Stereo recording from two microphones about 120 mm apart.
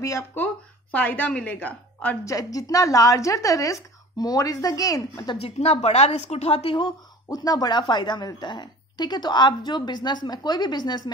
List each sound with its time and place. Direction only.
0.0 s a woman's voice: 25° left (ahead or behind)
2.2 s a woman's voice: 30° left (ahead or behind)
5.4 s a woman's voice: 60° left (ahead or behind)
7.2 s speech: 30° left (ahead or behind)